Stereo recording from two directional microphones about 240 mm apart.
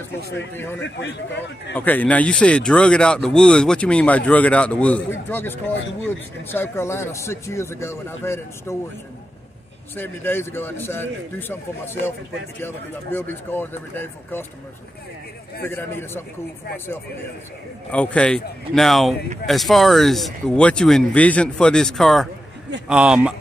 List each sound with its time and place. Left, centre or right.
0.7 s a man's voice: left
1.7 s speech: centre
9.9 s speech: centre
15.6 s speech: centre
17.9 s speech: centre